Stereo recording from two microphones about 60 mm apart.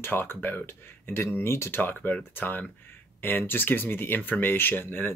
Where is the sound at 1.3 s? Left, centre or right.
Left.